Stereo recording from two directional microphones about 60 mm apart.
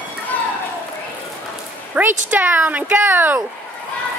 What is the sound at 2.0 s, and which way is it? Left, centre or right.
Speech, right.